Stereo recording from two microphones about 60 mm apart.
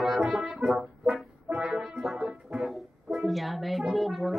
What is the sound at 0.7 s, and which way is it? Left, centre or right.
Music, centre.